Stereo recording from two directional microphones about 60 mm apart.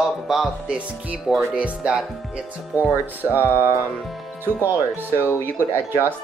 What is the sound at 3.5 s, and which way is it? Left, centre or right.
Music, left.